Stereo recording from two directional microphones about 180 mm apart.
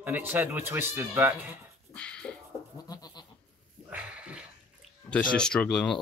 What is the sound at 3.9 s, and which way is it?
Dog, 5° right (ahead or behind).